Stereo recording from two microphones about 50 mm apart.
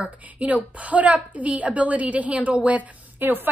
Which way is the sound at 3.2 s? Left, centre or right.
Right.